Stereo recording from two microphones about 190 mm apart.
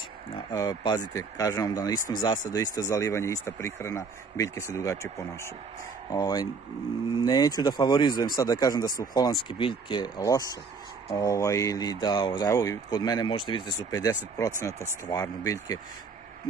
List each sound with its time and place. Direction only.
0.3 s speech: 20° left (ahead or behind)